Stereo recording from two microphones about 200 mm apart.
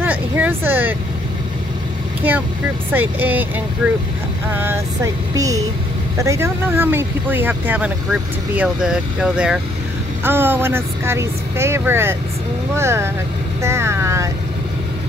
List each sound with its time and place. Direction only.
0.0 s a sound: 5° right (ahead or behind)
2.2 s speech: 10° right (ahead or behind)
13.6 s vehicle: 15° right (ahead or behind)